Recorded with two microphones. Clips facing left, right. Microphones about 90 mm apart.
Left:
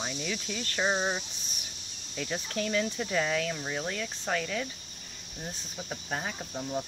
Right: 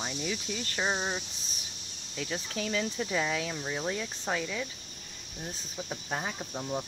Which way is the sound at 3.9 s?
15° right (ahead or behind).